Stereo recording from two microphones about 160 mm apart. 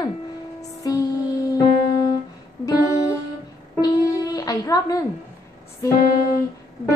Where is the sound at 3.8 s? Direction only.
25° left (ahead or behind).